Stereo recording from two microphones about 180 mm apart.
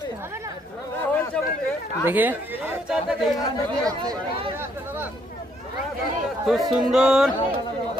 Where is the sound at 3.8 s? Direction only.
20° right (ahead or behind).